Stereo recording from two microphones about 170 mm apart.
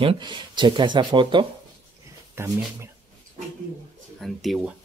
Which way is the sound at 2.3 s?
15° right (ahead or behind).